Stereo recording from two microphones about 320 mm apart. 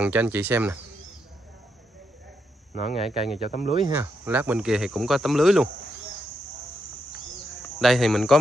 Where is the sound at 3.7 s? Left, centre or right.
Centre.